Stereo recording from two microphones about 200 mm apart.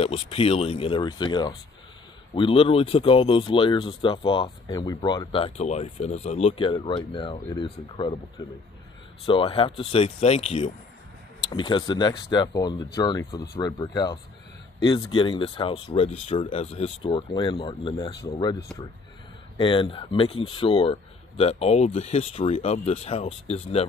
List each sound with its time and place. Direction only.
0.0 s speech: 30° left (ahead or behind)
9.2 s speech: 25° left (ahead or behind)